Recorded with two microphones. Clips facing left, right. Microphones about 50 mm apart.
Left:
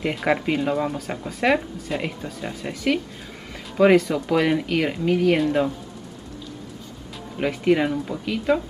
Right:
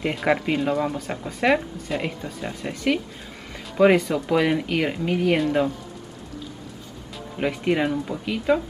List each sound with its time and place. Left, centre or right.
0.0 s speech: centre
7.3 s speech: centre